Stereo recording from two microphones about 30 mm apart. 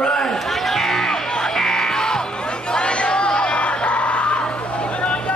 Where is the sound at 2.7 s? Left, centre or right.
Left.